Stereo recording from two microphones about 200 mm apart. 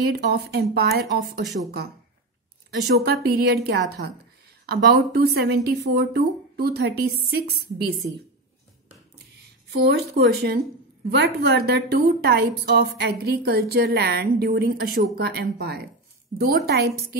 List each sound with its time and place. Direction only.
0.1 s a woman's voice: 55° right (ahead or behind)
2.7 s a woman's voice: 55° right (ahead or behind)
9.7 s a woman's voice: 55° right (ahead or behind)